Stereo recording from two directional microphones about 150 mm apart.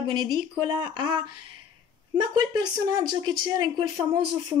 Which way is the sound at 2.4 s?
30° right (ahead or behind).